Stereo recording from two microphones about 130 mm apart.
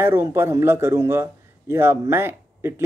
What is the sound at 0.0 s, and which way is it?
A man's voice, 20° right (ahead or behind).